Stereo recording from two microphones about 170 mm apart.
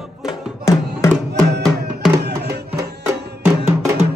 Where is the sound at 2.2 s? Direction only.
75° right (ahead or behind).